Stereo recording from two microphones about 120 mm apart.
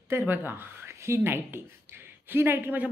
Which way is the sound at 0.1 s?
15° right (ahead or behind).